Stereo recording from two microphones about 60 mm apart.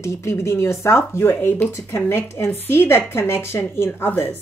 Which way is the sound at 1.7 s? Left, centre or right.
Left.